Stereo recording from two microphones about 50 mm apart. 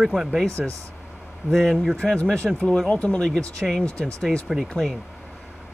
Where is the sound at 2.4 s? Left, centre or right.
Centre.